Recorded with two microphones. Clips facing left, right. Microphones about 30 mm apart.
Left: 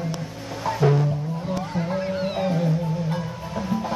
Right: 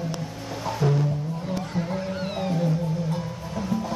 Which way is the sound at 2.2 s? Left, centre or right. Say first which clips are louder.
Left 1 dB; centre.